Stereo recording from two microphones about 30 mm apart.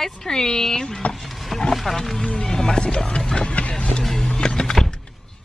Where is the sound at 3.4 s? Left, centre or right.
Left.